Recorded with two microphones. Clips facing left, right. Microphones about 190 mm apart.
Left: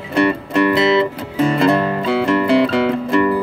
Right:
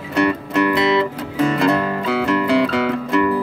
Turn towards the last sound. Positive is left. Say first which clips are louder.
# left 2 dB
turn(degrees=30)  # may be behind; listen again after turning